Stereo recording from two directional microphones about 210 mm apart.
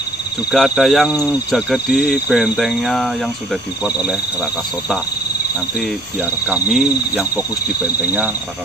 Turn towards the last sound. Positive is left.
turn(degrees=-5)  # may be behind; listen again after turning